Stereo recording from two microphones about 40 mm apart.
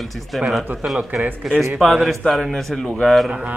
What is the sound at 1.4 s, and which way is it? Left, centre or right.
Speech, centre.